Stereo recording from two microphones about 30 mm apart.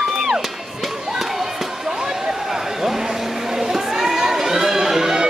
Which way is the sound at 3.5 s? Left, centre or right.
Centre.